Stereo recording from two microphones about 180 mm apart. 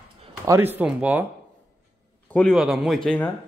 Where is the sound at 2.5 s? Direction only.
5° right (ahead or behind).